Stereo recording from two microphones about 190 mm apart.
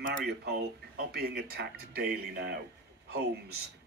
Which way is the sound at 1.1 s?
55° right (ahead or behind).